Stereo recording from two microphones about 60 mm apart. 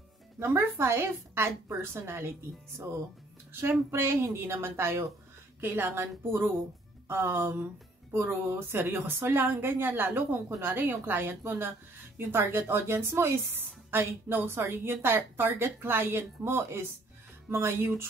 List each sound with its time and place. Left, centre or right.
0.4 s a woman's voice: right
3.9 s a woman's voice: right
5.6 s a woman's voice: right